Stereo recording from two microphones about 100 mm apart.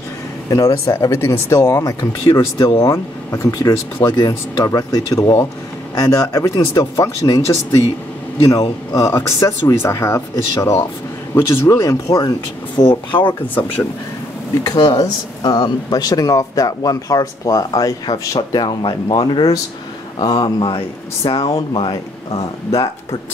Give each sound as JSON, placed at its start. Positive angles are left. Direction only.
{"t": 0.5, "sound": "speech", "side_deg": 30}
{"t": 2.0, "sound": "speech", "side_deg": 45}
{"t": 12.8, "sound": "speech", "side_deg": 55}
{"t": 13.3, "sound": "speech", "side_deg": 15}
{"t": 14.8, "sound": "speech", "side_deg": 45}
{"t": 21.5, "sound": "speech", "side_deg": 50}